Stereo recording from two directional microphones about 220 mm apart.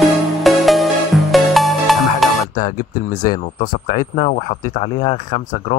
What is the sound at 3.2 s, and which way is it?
Speech, 40° left (ahead or behind).